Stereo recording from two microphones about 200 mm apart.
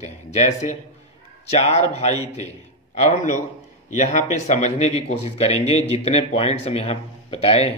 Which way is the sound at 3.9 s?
35° left (ahead or behind).